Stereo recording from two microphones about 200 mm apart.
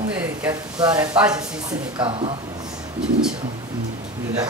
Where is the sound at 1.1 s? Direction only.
5° right (ahead or behind).